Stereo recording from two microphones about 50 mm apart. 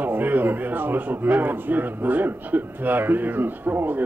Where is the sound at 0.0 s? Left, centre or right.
Right.